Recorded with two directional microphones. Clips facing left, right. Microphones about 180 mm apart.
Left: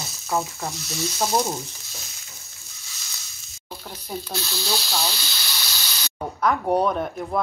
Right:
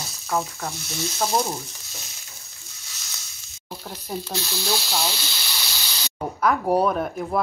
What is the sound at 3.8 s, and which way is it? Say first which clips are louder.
Speech: right 1 dB; 5° right (ahead or behind).